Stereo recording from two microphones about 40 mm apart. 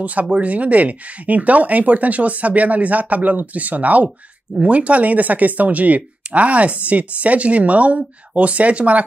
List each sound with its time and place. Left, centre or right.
0.0 s speech: right